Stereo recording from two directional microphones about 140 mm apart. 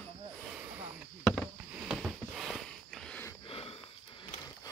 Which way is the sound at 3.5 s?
40° left (ahead or behind).